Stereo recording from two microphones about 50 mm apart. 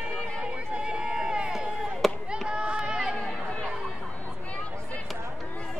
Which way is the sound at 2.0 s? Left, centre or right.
Centre.